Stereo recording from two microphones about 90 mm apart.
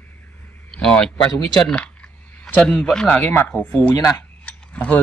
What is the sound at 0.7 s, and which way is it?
Speech, 10° left (ahead or behind).